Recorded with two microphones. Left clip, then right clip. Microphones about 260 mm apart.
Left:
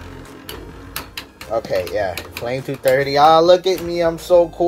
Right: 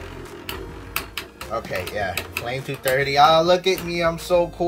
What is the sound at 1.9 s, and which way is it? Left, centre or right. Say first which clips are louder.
Speech: left 4 dB; centre.